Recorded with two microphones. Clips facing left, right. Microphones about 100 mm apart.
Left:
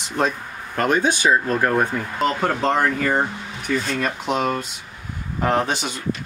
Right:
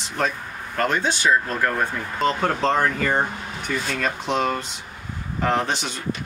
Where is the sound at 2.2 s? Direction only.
5° left (ahead or behind).